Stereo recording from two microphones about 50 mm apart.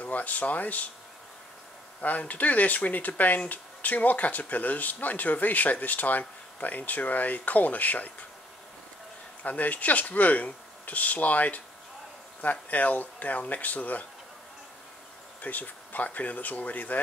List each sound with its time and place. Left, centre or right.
0.0 s speech: left
2.0 s speech: left
9.4 s speech: left
15.4 s speech: left